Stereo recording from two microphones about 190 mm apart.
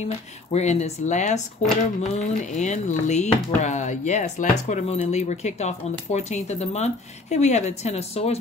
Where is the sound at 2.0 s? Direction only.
40° left (ahead or behind).